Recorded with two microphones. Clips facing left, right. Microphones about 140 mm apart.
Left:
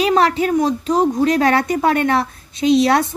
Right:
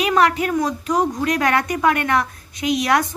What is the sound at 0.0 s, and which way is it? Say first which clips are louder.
Speech: left 2 dB; 30° left (ahead or behind).